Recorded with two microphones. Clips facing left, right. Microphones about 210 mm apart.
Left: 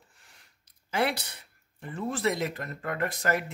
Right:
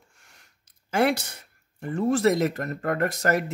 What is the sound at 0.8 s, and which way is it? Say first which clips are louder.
Speech: right 6 dB; 45° right (ahead or behind).